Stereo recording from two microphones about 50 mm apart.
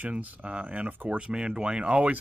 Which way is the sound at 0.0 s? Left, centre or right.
Right.